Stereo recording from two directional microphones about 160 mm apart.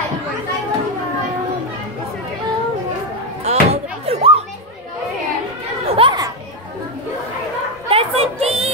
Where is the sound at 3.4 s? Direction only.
40° right (ahead or behind).